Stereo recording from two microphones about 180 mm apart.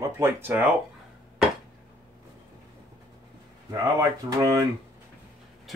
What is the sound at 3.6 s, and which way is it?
Speech, 20° right (ahead or behind).